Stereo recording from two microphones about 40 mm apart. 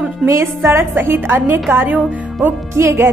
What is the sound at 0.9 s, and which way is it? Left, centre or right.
A woman's voice, right.